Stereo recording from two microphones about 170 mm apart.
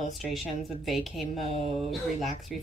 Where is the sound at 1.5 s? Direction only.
40° right (ahead or behind).